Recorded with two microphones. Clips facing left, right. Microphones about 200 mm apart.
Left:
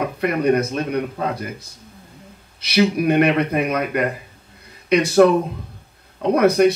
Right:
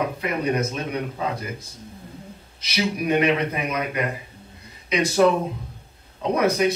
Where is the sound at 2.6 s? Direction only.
60° left (ahead or behind).